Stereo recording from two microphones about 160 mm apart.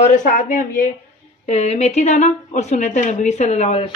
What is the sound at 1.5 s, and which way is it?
Speech, 45° left (ahead or behind).